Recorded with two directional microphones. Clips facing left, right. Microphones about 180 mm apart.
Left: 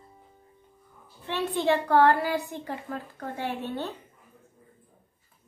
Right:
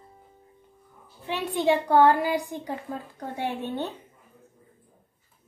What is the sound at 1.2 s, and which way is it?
A woman's voice, 15° right (ahead or behind).